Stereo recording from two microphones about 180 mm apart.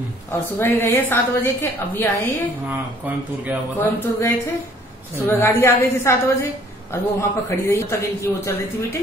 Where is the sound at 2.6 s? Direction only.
10° right (ahead or behind).